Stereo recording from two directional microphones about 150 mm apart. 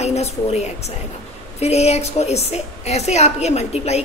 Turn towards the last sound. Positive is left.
turn(degrees=45)  # may be behind; listen again after turning